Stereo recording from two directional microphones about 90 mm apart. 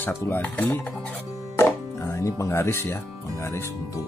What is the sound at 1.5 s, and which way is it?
Music, 30° left (ahead or behind).